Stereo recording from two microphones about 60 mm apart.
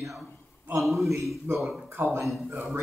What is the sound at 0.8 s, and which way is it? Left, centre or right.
Speech, centre.